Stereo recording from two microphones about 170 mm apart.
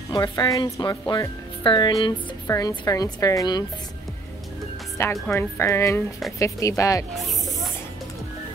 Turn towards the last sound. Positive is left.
turn(degrees=0)  # may be behind; listen again after turning